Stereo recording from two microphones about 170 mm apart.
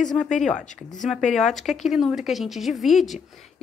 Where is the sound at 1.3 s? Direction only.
Centre (ahead or behind).